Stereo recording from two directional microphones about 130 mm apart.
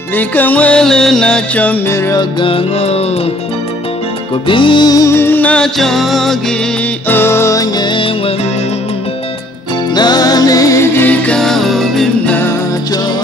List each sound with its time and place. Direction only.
0.1 s music: 15° left (ahead or behind)
1.9 s music: 20° left (ahead or behind)
2.4 s music: 50° left (ahead or behind)
4.5 s music: 40° left (ahead or behind); by 6.3 s centre (ahead or behind)
7.1 s music: 20° left (ahead or behind); by 8.1 s 35° left (ahead or behind)
9.9 s music: 30° left (ahead or behind); by 12.4 s centre (ahead or behind)